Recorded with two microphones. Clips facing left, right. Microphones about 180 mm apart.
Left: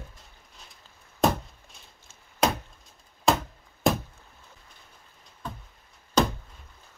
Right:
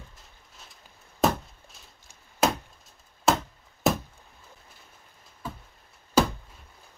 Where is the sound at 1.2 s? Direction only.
Centre (ahead or behind).